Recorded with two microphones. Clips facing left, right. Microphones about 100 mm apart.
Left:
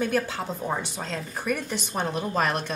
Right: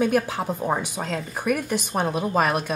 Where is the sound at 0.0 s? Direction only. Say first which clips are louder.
Right 4 dB; 10° right (ahead or behind).